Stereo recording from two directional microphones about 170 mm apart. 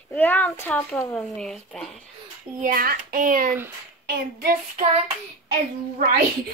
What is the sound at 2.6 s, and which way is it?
Child singing, 55° right (ahead or behind).